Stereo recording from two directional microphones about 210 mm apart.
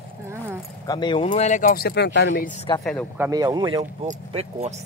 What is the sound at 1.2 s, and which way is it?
Speech, 35° left (ahead or behind).